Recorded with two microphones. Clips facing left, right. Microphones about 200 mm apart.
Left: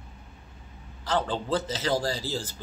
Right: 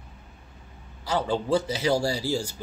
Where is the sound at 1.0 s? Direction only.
10° right (ahead or behind).